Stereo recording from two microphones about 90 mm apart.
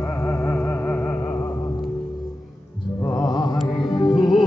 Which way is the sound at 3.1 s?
50° left (ahead or behind).